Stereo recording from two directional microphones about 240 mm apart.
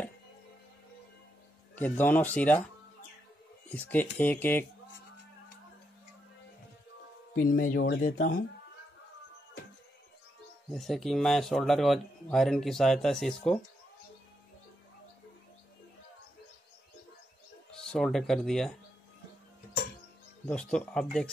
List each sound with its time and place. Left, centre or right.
1.8 s speech: centre
3.7 s speech: centre
7.3 s speech: left
10.7 s a man's voice: centre
17.8 s a man's voice: centre
20.4 s a man's voice: centre